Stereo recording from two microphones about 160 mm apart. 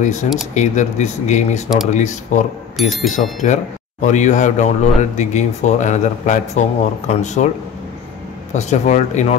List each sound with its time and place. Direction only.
0.0 s speech: 45° left (ahead or behind)
2.8 s speech: centre (ahead or behind)
3.1 s speech: 50° left (ahead or behind)
8.5 s speech: 45° left (ahead or behind)